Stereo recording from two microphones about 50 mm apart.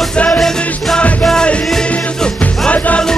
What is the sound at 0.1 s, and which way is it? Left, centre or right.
Music, centre.